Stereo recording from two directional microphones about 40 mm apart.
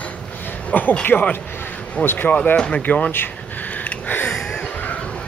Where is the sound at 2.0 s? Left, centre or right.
Left.